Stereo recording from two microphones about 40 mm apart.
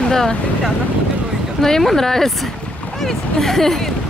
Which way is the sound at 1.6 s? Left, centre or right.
Centre.